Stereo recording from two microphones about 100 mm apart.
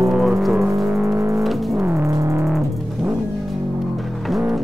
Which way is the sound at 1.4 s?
Centre (ahead or behind).